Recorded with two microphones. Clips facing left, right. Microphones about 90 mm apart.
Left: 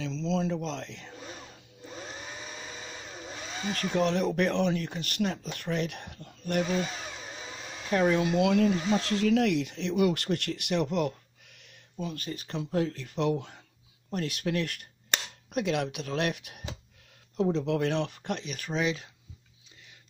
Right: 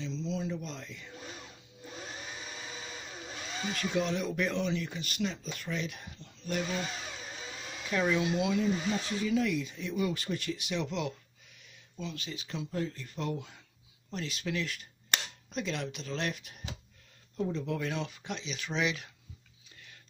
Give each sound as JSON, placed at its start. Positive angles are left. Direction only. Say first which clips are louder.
{"t": 0.0, "sound": "speech", "louder": "left 5 dB", "side_deg": 90}
{"t": 3.7, "sound": "speech", "louder": "left 5 dB", "side_deg": 55}
{"t": 7.8, "sound": "speech", "louder": "left 4 dB", "side_deg": 45}
{"t": 8.9, "sound": "speech", "louder": "left 6 dB", "side_deg": 80}
{"t": 14.1, "sound": "speech", "louder": "left 5 dB", "side_deg": 55}
{"t": 17.4, "sound": "speech", "louder": "left 6 dB", "side_deg": 80}
{"t": 18.8, "sound": "speech", "louder": "left 3 dB", "side_deg": 35}